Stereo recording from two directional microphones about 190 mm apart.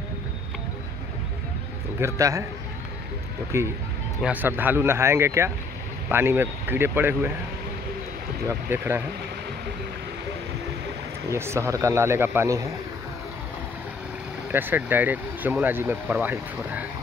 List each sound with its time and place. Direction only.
2.0 s speech: 15° right (ahead or behind)
3.5 s speech: 15° right (ahead or behind)
8.5 s speech: 15° right (ahead or behind)
11.2 s speech: 15° right (ahead or behind)
14.5 s speech: 10° right (ahead or behind)